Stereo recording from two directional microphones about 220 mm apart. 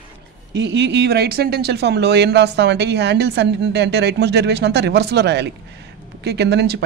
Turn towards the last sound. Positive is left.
turn(degrees=-50)  # may be behind; listen again after turning